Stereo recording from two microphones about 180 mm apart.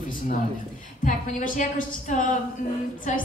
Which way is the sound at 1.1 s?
45° left (ahead or behind).